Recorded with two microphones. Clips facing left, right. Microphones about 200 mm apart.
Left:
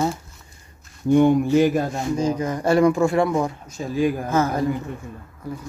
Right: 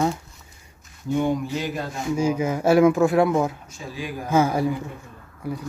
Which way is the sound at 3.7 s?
45° left (ahead or behind).